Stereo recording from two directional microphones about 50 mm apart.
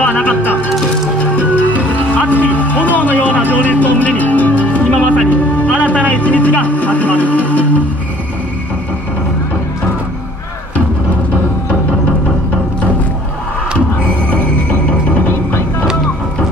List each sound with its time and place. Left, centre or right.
0.0 s speech: left
1.2 s music: left
2.0 s vehicle: left
5.3 s speech: left
13.7 s music: left